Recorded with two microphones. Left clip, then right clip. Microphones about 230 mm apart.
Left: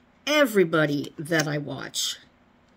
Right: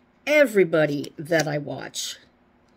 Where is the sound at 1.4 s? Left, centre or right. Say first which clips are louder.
Right 2 dB; left.